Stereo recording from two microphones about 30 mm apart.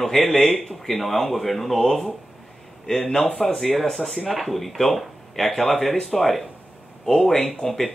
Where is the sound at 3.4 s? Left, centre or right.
Centre.